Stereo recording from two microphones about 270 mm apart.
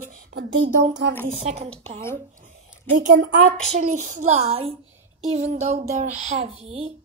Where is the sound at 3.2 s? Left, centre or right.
Right.